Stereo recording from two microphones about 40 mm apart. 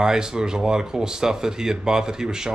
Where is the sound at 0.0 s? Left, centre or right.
Centre.